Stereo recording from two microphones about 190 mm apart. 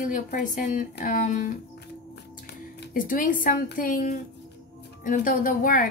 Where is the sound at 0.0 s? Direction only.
45° left (ahead or behind).